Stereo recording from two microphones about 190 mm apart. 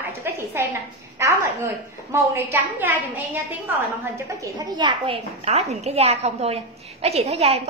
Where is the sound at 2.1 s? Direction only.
15° right (ahead or behind).